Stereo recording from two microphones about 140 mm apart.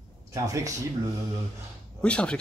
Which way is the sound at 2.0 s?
10° left (ahead or behind).